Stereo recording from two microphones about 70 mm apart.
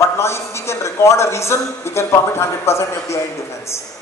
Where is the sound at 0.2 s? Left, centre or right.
Left.